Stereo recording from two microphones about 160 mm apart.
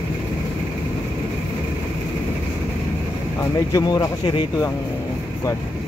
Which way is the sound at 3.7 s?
25° left (ahead or behind).